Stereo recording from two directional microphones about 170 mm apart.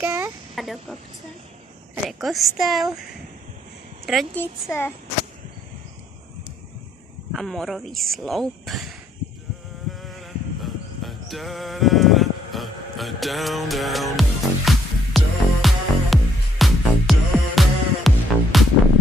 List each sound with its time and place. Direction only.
0.0 s a sound: 15° right (ahead or behind)
0.6 s speech: centre (ahead or behind)
2.0 s speech: centre (ahead or behind)
4.0 s a woman's voice: centre (ahead or behind)
7.3 s speech: centre (ahead or behind)
9.8 s a sound: centre (ahead or behind)